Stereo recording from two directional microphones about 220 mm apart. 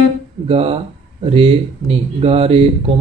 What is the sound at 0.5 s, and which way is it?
Speech, 25° right (ahead or behind).